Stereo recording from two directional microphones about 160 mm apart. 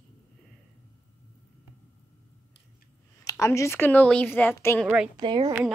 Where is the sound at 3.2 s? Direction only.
20° left (ahead or behind).